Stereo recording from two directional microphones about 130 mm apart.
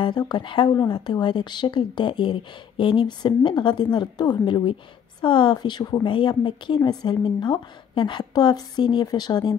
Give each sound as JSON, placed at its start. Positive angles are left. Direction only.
{"t": 0.0, "sound": "speech", "side_deg": 35}